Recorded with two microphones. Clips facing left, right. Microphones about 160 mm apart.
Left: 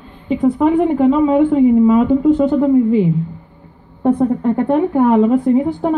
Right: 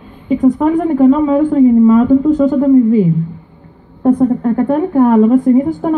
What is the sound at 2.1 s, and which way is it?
Speech, 40° right (ahead or behind).